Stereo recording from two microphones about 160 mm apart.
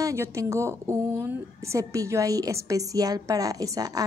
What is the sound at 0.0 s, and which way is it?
A woman's voice, 20° right (ahead or behind).